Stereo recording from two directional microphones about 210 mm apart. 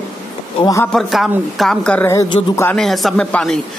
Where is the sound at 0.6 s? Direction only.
15° left (ahead or behind).